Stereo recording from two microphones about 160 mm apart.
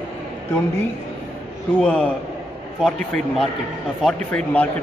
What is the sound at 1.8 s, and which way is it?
A man's voice, 5° left (ahead or behind).